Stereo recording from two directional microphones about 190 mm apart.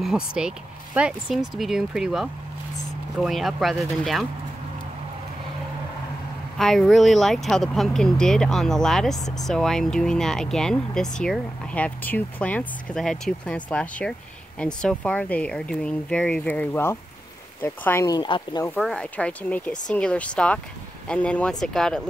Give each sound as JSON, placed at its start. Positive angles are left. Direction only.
{"t": 0.0, "sound": "speech", "side_deg": -5}
{"t": 6.6, "sound": "speech", "side_deg": 0}
{"t": 18.8, "sound": "speech", "side_deg": 5}